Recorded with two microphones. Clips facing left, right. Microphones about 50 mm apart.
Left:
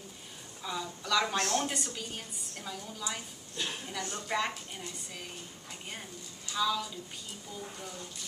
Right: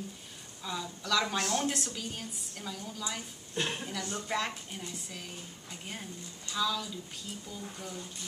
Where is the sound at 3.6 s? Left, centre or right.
Right.